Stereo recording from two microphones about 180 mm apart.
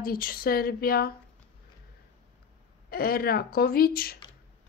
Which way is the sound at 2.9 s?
55° left (ahead or behind).